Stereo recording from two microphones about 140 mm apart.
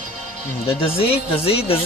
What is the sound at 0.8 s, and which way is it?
Speech, 40° left (ahead or behind).